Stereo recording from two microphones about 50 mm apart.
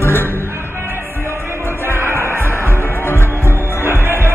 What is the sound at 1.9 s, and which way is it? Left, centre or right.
Music, right.